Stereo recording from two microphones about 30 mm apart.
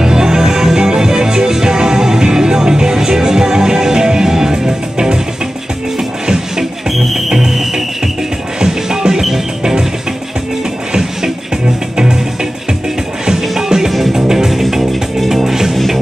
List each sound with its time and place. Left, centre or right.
0.0 s music: right
6.2 s music: centre
8.5 s music: right
10.9 s music: centre
13.4 s music: centre